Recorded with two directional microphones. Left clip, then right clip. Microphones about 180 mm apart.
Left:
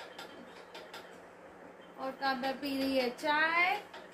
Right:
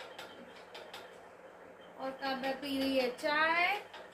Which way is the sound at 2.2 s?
20° left (ahead or behind).